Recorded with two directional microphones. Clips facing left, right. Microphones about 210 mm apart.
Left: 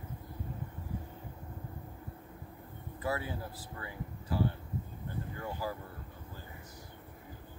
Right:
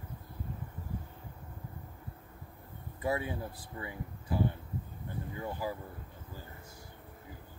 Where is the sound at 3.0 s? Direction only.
20° right (ahead or behind).